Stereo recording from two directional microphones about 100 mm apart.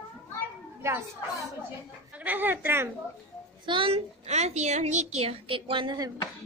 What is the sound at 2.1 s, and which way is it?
Speech, 15° right (ahead or behind).